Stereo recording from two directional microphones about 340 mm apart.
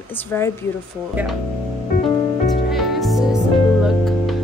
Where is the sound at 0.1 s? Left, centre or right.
Centre.